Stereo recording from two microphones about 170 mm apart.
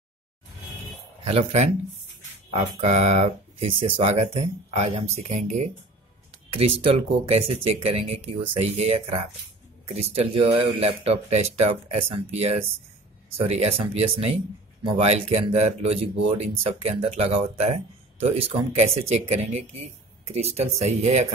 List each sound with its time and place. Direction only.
1.2 s speech: 40° right (ahead or behind)